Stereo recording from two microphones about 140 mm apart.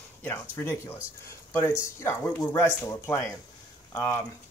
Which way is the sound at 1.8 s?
20° left (ahead or behind).